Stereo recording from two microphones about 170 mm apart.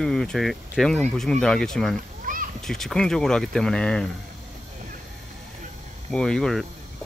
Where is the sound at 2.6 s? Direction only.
5° left (ahead or behind).